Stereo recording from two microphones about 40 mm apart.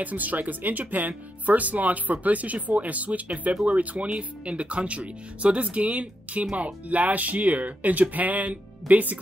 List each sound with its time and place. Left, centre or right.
0.0 s speech: right